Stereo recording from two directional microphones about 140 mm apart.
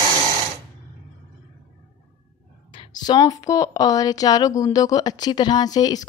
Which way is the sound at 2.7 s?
30° left (ahead or behind).